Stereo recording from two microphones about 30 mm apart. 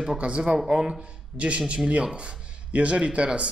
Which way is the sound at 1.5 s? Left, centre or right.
Right.